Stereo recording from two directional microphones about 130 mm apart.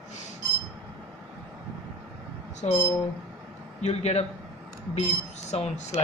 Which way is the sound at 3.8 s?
60° left (ahead or behind).